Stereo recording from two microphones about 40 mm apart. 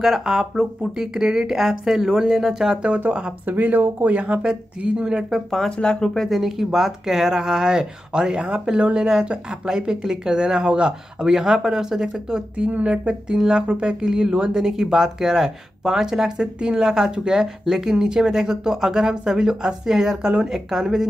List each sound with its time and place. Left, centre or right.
0.0 s speech: centre
3.1 s speech: right
3.4 s speech: right
4.1 s speech: right
4.5 s speech: right
5.7 s speech: centre
6.2 s speech: centre; by 9.0 s right
9.0 s speech: centre
12.5 s speech: right; by 21.1 s centre